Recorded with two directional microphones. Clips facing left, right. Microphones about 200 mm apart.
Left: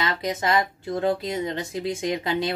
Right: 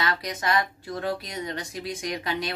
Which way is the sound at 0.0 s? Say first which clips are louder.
Left 3 dB; 25° left (ahead or behind).